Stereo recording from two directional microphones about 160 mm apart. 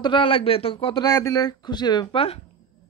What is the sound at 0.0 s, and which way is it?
A woman's voice, 30° left (ahead or behind).